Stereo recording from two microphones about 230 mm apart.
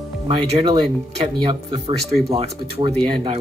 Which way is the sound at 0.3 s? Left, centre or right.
Right.